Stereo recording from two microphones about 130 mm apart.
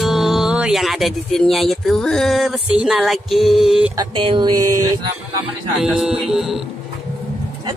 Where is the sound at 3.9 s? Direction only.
40° right (ahead or behind).